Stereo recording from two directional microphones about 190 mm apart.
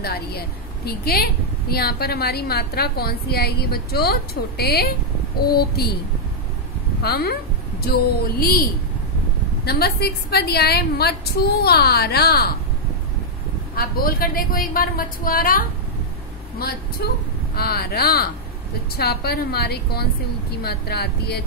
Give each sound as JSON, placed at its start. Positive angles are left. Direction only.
{"t": 0.0, "sound": "a woman's voice", "side_deg": 55}
{"t": 7.0, "sound": "a woman's voice", "side_deg": 55}
{"t": 9.7, "sound": "a woman's voice", "side_deg": 55}
{"t": 13.7, "sound": "a woman's voice", "side_deg": 50}
{"t": 17.0, "sound": "a woman's voice", "side_deg": 55}